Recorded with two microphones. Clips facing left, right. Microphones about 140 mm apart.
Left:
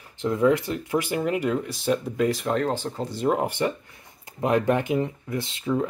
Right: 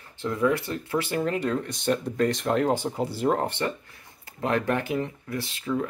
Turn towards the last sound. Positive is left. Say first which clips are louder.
# left 3 dB
turn(degrees=20)  # may be behind; listen again after turning